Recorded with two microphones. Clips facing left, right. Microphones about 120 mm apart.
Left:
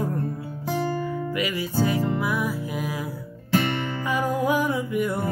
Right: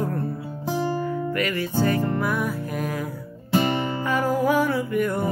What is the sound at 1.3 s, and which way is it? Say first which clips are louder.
Music: right 2 dB; 10° left (ahead or behind).